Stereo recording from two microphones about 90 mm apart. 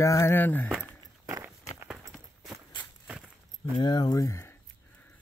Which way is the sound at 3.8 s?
50° left (ahead or behind).